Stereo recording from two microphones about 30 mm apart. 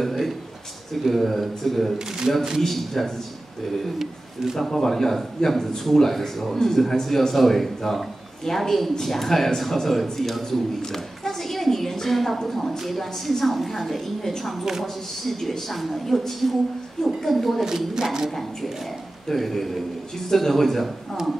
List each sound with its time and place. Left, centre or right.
0.0 s a sound: centre
1.0 s a woman's voice: centre
4.6 s a woman's voice: centre
14.6 s a woman's voice: centre
15.2 s a woman's voice: centre
17.6 s a woman's voice: centre
19.2 s speech: centre